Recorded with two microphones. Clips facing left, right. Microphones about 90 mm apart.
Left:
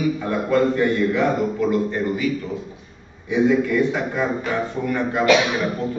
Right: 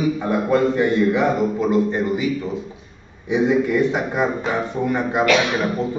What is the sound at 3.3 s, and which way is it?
A man's voice, 20° right (ahead or behind).